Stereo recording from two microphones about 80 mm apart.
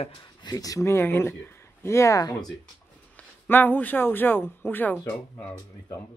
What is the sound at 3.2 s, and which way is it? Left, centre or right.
Speech, left.